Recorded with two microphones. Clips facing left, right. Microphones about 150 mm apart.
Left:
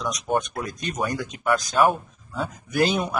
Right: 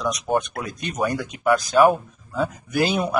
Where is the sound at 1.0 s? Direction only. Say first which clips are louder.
Right 4 dB; centre (ahead or behind).